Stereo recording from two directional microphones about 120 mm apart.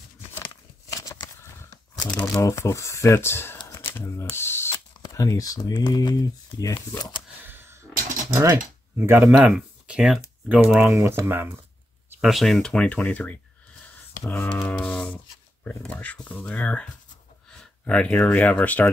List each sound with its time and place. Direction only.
0.9 s tearing: 30° left (ahead or behind)
2.0 s speech: 10° left (ahead or behind)
2.4 s speech: 25° left (ahead or behind)
3.6 s computer keyboard: 20° left (ahead or behind)
5.0 s speech: 30° left (ahead or behind)
6.5 s speech: 20° left (ahead or behind)
7.0 s speech: 40° left (ahead or behind)
7.4 s a sound: 20° right (ahead or behind)
8.4 s speech: 20° right (ahead or behind); by 10.9 s 5° right (ahead or behind)
10.9 s speech: 20° right (ahead or behind)
12.2 s speech: centre (ahead or behind)